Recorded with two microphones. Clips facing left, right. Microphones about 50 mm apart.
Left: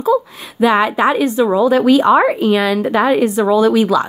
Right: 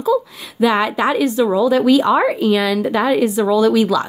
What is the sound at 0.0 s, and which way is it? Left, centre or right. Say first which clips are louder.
Speech: left 2 dB; left.